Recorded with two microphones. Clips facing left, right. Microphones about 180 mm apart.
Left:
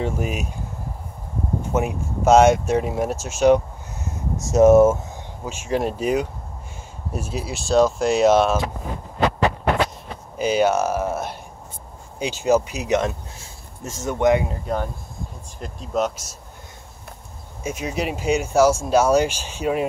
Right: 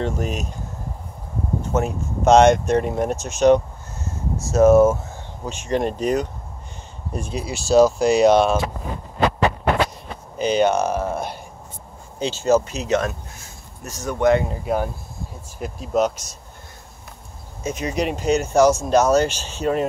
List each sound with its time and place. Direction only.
0.0 s speech: 10° left (ahead or behind)
1.7 s speech: 10° left (ahead or behind)
4.4 s speech: 20° left (ahead or behind)
5.4 s speech: 5° left (ahead or behind)
10.3 s speech: 5° left (ahead or behind)
14.6 s speech: 10° right (ahead or behind)
17.6 s speech: 5° left (ahead or behind)